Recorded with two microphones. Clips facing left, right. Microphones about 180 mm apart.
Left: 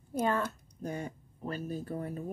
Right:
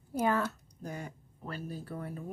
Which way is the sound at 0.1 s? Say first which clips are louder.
Right 1 dB; 5° right (ahead or behind).